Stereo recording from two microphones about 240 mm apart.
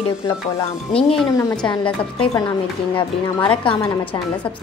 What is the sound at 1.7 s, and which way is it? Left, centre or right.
Speech, centre.